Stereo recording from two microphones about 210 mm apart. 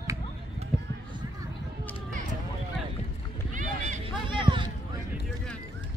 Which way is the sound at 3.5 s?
40° right (ahead or behind).